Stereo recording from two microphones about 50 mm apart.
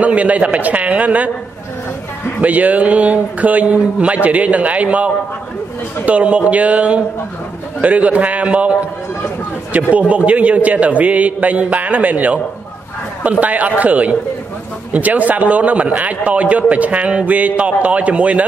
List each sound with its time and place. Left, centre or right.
0.0 s a man's voice: right
2.4 s a man's voice: right
9.9 s a man's voice: right